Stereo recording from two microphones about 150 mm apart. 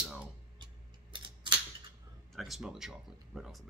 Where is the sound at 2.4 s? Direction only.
Centre (ahead or behind).